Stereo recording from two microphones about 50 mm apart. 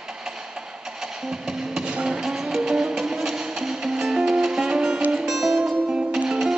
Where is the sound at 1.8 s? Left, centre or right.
Right.